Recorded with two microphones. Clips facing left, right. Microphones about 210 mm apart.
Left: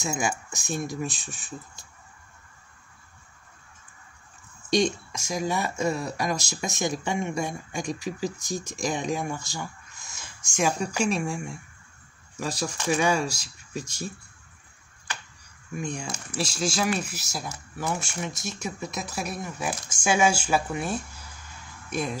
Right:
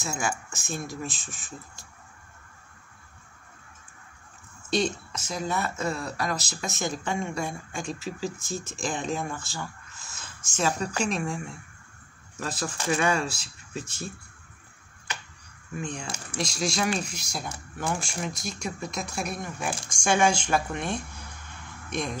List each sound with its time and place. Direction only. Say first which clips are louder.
0.0 s speech: left 2 dB; 15° left (ahead or behind)
4.6 s speech: left 3 dB; 15° left (ahead or behind)
15.7 s speech: left 2 dB; 10° left (ahead or behind)